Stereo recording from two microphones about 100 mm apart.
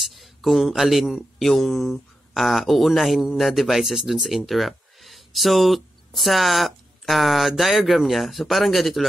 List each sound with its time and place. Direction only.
0.0 s speech: centre (ahead or behind)